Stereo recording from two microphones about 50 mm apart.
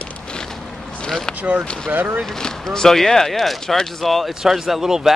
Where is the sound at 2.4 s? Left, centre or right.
Centre.